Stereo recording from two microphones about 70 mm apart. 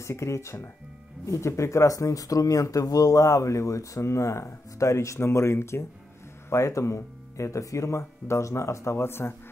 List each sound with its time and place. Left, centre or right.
0.0 s speech: left